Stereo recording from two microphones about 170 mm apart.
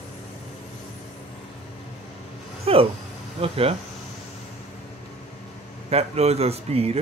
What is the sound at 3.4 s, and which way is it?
Speech, 35° right (ahead or behind).